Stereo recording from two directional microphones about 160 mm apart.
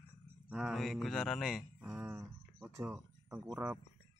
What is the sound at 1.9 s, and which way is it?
Speech, 15° right (ahead or behind).